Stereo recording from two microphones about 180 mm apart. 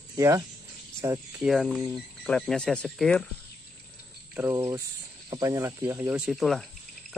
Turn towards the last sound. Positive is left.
turn(degrees=0)  # may be behind; listen again after turning